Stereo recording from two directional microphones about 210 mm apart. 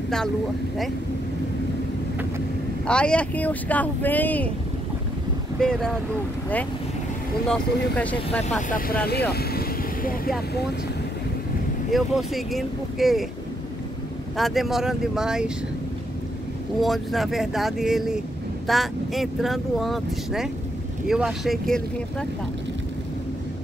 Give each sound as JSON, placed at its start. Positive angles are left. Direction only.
{"t": 2.9, "sound": "speech", "side_deg": 5}
{"t": 5.6, "sound": "speech", "side_deg": 5}
{"t": 7.4, "sound": "speech", "side_deg": 5}
{"t": 8.5, "sound": "speech", "side_deg": 40}
{"t": 9.0, "sound": "vehicle", "side_deg": 50}
{"t": 11.9, "sound": "speech", "side_deg": 0}
{"t": 14.3, "sound": "speech", "side_deg": 0}
{"t": 16.8, "sound": "speech", "side_deg": 0}